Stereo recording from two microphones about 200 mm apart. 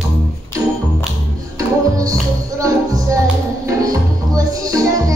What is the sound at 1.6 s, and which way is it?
Music, 15° right (ahead or behind).